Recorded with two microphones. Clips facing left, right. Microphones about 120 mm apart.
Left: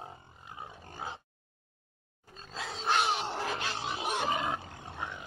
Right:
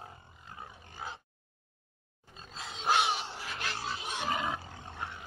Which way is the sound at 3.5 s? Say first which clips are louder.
Left 2 dB; 20° left (ahead or behind).